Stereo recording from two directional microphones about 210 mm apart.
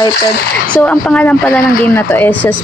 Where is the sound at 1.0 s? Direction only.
5° left (ahead or behind).